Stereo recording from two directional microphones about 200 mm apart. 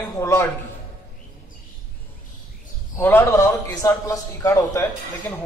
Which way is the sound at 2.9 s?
10° left (ahead or behind).